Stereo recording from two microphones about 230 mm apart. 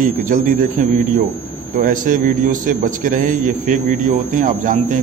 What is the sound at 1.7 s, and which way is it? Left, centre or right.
Speech, right.